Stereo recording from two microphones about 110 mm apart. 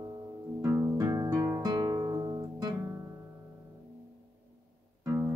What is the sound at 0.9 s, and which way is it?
Guitar, 30° right (ahead or behind).